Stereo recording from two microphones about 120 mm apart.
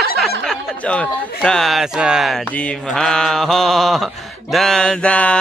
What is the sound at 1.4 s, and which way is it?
Mantra, 5° left (ahead or behind).